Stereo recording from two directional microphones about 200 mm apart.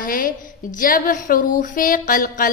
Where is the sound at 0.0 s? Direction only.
45° left (ahead or behind).